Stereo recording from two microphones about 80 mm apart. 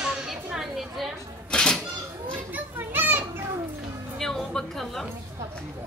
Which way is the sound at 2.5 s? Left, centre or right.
Right.